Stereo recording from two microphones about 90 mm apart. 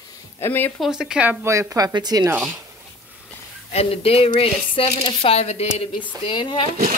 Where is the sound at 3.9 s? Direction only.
90° left.